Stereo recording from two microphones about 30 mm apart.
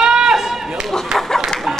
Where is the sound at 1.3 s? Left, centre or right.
Centre.